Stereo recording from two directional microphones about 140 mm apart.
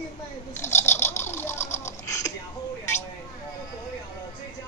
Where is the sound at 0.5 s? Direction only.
15° left (ahead or behind).